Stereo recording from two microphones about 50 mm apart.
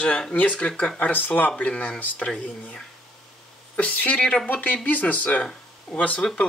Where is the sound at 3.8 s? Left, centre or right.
Left.